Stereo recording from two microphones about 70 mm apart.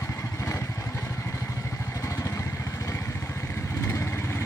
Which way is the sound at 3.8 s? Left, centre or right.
Left.